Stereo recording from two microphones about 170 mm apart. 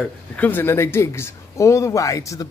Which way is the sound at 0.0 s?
10° left (ahead or behind).